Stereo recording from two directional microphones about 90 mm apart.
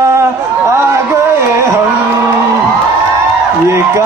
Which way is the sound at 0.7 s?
30° right (ahead or behind).